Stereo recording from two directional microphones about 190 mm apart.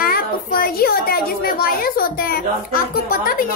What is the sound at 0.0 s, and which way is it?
A child's voice, 50° left (ahead or behind).